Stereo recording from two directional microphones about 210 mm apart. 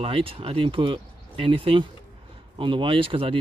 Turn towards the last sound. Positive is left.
turn(degrees=-25)  # may be behind; listen again after turning